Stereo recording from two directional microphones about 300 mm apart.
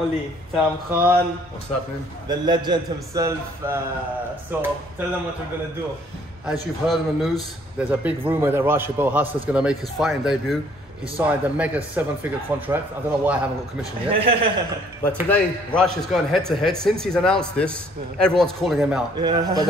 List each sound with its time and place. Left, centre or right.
0.6 s a man's voice: centre
2.2 s a man's voice: centre
6.4 s speech: centre
14.1 s a man's voice: centre
15.2 s speech: centre
19.1 s a man's voice: centre